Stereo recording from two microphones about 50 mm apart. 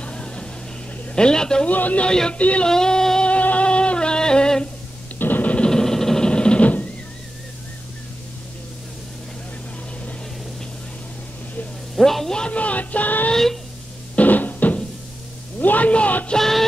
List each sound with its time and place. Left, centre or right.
0.0 s vehicle: left
1.1 s speech: centre
1.7 s speech: left
2.0 s speech: centre
2.6 s female singing: centre
3.3 s music: left
5.2 s a sound: left
5.7 s sewing machine: centre; by 6.9 s left
11.9 s sizzle: centre
12.4 s music: left
13.3 s a sound: centre
14.1 s music: left
15.6 s a sound: left
16.3 s music: centre